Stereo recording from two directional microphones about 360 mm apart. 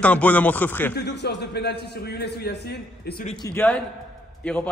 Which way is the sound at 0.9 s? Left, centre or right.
Left.